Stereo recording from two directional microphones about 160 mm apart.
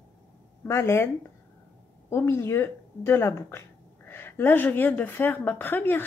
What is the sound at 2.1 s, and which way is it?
A woman's voice, 15° left (ahead or behind).